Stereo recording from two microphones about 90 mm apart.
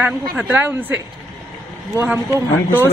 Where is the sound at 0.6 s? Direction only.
20° right (ahead or behind).